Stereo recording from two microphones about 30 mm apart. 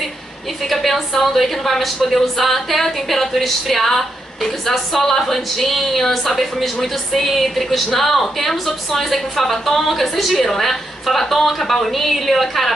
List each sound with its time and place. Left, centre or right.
0.6 s a woman's voice: centre